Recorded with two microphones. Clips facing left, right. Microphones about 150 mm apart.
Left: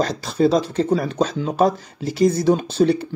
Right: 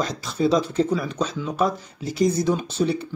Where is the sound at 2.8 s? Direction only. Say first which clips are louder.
Left 6 dB; 60° left (ahead or behind).